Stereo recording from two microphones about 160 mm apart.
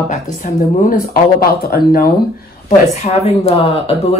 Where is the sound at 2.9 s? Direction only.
45° left (ahead or behind).